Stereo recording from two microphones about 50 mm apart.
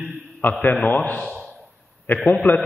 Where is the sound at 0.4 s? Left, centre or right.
Left.